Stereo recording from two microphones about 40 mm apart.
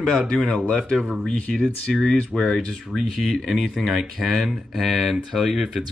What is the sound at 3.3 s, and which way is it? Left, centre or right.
Speech, centre.